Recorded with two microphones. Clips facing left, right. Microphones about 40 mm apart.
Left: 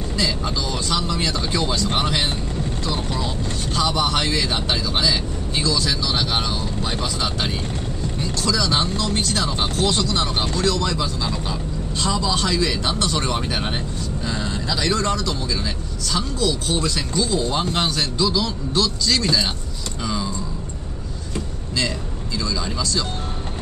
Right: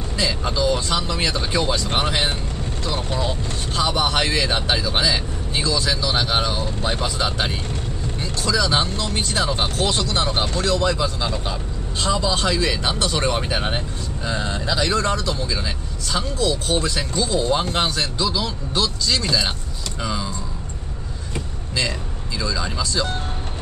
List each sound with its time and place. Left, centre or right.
0.2 s speech: centre
22.4 s speech: centre